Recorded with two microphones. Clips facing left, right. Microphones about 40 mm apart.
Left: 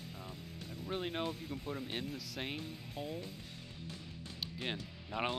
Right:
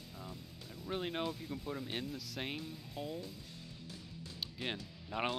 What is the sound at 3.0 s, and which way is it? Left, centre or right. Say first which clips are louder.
Speech: even; left.